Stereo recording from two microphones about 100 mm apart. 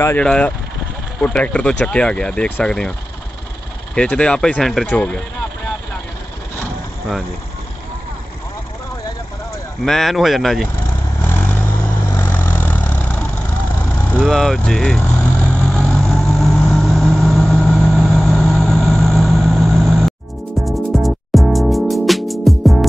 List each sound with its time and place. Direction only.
0.2 s speech: 10° left (ahead or behind)
3.9 s speech: 10° left (ahead or behind)
9.8 s speech: centre (ahead or behind)
11.2 s vehicle: 15° left (ahead or behind)
14.3 s speech: 5° left (ahead or behind)
15.6 s vehicle: 5° left (ahead or behind)
20.6 s music: centre (ahead or behind)